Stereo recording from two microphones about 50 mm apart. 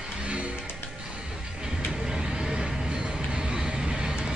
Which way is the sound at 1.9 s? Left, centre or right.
Centre.